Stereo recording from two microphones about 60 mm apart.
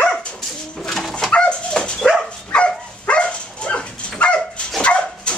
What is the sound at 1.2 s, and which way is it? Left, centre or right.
Dog, centre.